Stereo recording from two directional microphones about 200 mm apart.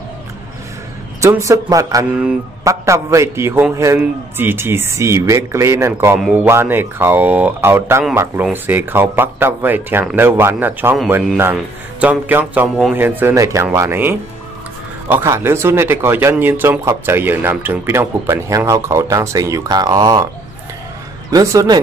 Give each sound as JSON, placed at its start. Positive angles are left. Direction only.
{"t": 1.2, "sound": "speech", "side_deg": -15}
{"t": 21.3, "sound": "speech", "side_deg": -15}